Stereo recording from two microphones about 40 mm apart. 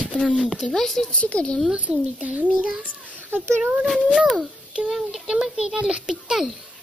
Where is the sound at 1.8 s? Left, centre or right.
Right.